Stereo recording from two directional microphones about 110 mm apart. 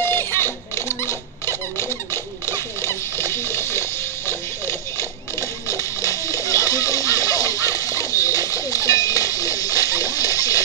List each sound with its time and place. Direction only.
0.0 s rodents: 20° left (ahead or behind)
2.5 s splash: 25° left (ahead or behind)
5.7 s music: 30° left (ahead or behind)